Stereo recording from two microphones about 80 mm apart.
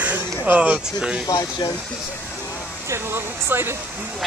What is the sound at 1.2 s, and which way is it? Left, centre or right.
Speech, left.